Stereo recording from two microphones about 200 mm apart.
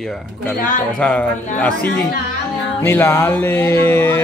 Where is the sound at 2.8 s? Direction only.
10° left (ahead or behind).